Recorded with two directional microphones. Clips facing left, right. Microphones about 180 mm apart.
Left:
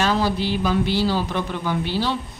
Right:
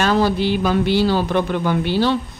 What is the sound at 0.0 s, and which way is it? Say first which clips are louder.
A man's voice: right 4 dB; 55° right (ahead or behind).